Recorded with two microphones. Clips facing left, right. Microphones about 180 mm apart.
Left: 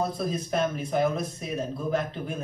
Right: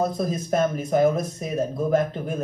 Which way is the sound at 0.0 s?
45° right (ahead or behind).